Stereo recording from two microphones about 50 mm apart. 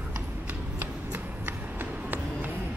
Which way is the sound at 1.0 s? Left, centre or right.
Right.